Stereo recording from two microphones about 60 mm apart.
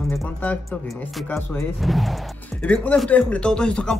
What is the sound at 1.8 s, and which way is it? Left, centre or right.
Speech, centre.